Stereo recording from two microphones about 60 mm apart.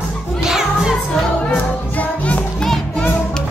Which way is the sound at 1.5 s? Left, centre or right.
Left.